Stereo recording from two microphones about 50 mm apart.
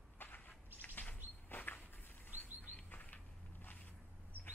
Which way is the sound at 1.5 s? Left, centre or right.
Left.